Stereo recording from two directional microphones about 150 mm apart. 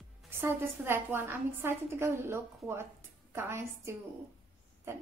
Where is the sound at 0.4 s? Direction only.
15° right (ahead or behind).